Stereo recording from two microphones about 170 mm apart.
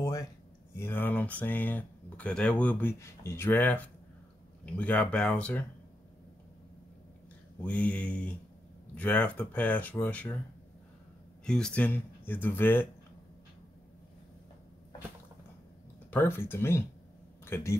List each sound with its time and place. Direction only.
0.0 s a sound: 20° left (ahead or behind)
0.7 s speech: 10° left (ahead or behind)
7.6 s speech: 10° left (ahead or behind)
11.4 s speech: 5° left (ahead or behind)
16.1 s speech: 10° left (ahead or behind)